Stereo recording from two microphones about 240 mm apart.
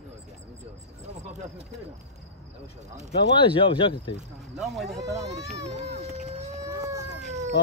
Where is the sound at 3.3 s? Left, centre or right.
Left.